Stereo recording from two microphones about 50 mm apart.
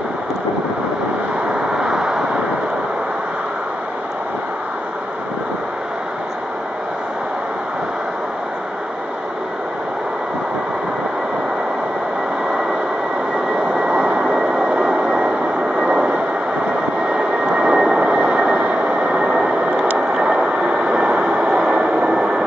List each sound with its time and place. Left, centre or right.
1.8 s vehicle: centre
13.8 s vehicle: right